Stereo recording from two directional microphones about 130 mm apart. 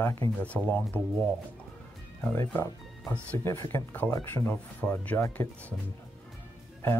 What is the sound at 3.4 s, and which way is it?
Speech, 20° left (ahead or behind).